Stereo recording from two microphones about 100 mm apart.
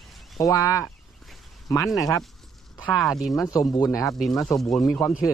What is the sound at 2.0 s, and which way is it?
Speech, 35° left (ahead or behind).